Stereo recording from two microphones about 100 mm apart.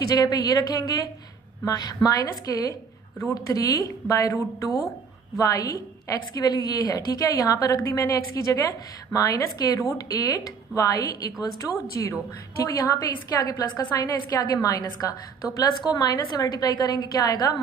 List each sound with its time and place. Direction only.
0.0 s a woman's voice: 40° left (ahead or behind)